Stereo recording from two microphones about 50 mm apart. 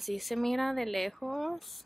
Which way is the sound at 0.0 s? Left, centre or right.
Centre.